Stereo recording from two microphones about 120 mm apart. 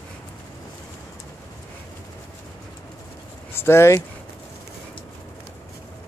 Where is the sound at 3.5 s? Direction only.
20° left (ahead or behind).